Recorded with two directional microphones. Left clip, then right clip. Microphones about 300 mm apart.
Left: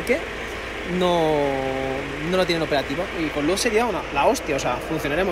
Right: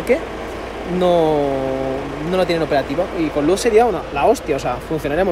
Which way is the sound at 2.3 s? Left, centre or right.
Centre.